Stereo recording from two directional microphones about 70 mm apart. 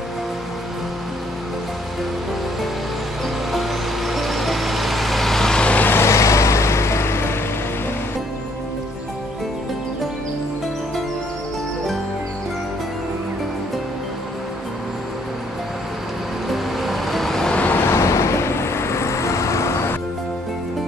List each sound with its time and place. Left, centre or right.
3.5 s vehicle: centre
5.8 s vehicle: left
16.4 s vehicle: centre
17.6 s vehicle: left
17.8 s vehicle: left